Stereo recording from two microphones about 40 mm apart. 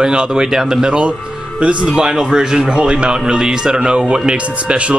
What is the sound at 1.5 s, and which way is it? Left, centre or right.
Speech, right.